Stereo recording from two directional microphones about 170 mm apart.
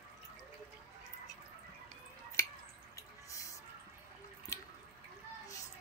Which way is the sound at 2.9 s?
20° left (ahead or behind).